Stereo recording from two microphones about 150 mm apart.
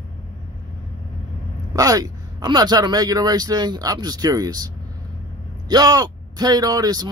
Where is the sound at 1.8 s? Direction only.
25° right (ahead or behind).